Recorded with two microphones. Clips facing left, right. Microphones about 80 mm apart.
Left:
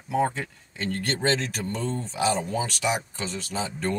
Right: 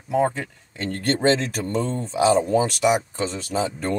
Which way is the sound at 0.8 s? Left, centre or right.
Right.